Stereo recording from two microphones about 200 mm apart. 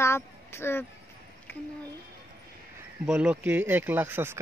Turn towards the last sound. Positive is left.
turn(degrees=-10)  # may be behind; listen again after turning